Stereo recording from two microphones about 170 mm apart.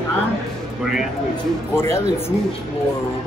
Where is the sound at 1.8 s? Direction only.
15° left (ahead or behind).